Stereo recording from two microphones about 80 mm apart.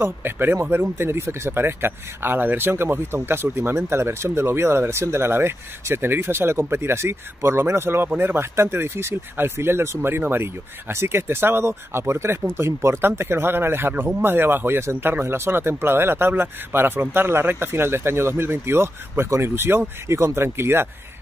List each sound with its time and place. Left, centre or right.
0.0 s speech: right